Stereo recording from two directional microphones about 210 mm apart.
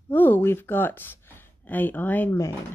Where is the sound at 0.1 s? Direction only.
10° left (ahead or behind).